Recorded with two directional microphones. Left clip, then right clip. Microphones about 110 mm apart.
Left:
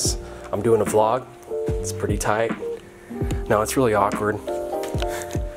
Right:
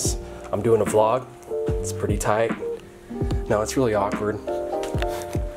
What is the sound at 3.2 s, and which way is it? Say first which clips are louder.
Speech: left 2 dB; 15° left (ahead or behind).